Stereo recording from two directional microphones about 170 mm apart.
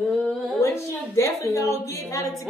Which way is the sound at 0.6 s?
15° left (ahead or behind).